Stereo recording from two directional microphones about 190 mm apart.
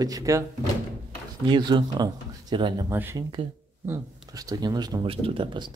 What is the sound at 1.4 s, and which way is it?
Speech, 25° right (ahead or behind).